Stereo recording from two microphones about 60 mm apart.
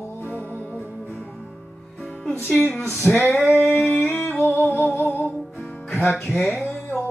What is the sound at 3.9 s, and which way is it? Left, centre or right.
Humming, left.